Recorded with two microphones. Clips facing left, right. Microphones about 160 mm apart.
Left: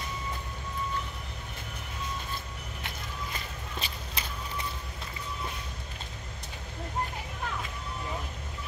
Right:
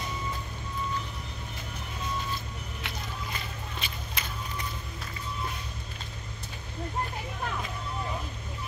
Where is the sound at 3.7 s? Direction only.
35° left (ahead or behind).